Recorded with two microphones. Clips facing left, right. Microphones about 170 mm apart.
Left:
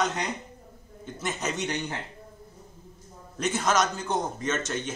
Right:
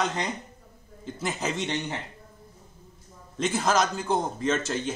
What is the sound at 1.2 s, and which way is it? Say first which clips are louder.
Speech: right 1 dB; 30° right (ahead or behind).